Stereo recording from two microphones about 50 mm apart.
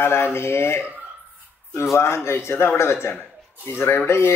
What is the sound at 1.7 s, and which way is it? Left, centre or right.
Speech, left.